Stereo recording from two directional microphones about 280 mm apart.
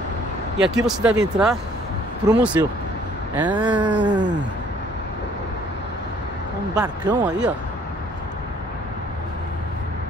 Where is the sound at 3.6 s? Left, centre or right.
Centre.